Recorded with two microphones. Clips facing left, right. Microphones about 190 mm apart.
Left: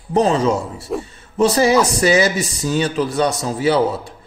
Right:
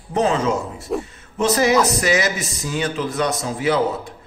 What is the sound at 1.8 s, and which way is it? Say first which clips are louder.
A woman's voice: left 4 dB; 30° left (ahead or behind).